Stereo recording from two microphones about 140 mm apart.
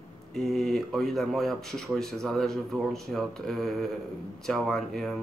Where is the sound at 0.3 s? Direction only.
Centre (ahead or behind).